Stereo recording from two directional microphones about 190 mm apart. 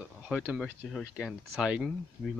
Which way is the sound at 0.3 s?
5° right (ahead or behind).